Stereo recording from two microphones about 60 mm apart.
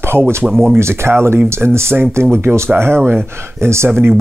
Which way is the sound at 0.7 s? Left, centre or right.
Right.